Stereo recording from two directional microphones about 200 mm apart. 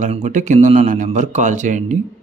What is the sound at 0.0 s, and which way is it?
Speech, 35° right (ahead or behind).